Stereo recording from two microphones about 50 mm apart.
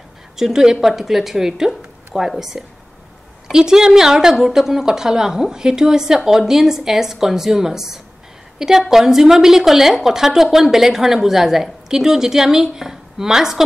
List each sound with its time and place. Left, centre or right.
0.4 s a woman's voice: centre